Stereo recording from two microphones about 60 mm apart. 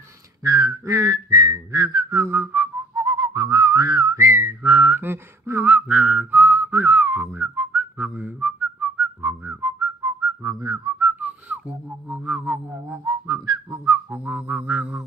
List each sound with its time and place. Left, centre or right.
0.4 s whistling: right
2.0 s whistling: right
2.3 s whistling: right
3.1 s whistling: right
4.2 s whistling: right
4.6 s whistling: right
9.4 s whistling: right
10.0 s whistling: right
11.0 s whistling: right
11.2 s a sound: right
14.1 s mantra: right